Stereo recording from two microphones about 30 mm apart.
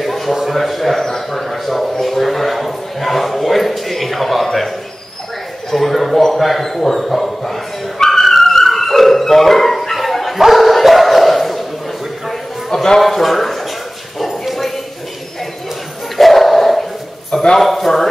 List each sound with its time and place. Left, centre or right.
0.0 s a sound: centre
6.2 s speech: centre
8.0 s music: centre
10.5 s dog: centre
12.3 s a sound: centre
13.0 s a man's voice: centre
14.1 s bow-wow: centre
16.2 s dog: centre
17.3 s a sound: centre
17.6 s speech: centre